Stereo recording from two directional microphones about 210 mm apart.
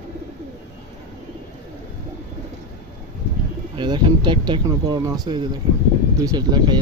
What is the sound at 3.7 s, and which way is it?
Speech, 20° right (ahead or behind).